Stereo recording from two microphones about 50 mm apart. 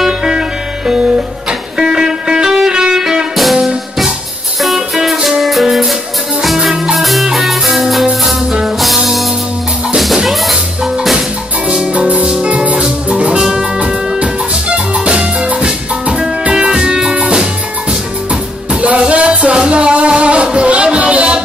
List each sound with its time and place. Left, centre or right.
0.0 s music: centre
10.5 s music: centre